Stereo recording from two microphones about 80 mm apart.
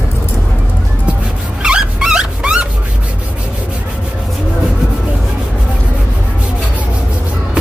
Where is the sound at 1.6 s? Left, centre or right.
Centre.